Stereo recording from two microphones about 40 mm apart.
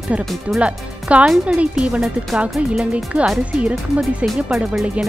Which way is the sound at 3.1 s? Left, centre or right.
Right.